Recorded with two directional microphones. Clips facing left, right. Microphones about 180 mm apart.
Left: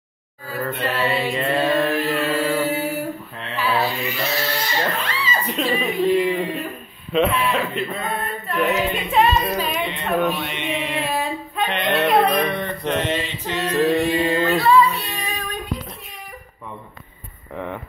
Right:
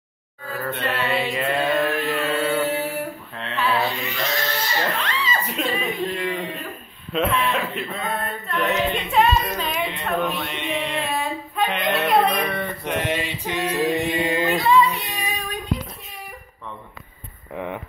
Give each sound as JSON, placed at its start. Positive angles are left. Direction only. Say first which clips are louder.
{"t": 0.5, "sound": "music", "louder": "left 2 dB", "side_deg": 0}
{"t": 1.7, "sound": "chant", "louder": "left 2 dB", "side_deg": 0}
{"t": 3.3, "sound": "a sound", "louder": "even", "side_deg": 0}
{"t": 5.0, "sound": "speech", "louder": "left 1 dB", "side_deg": 10}
{"t": 7.1, "sound": "music", "louder": "left 3 dB", "side_deg": 0}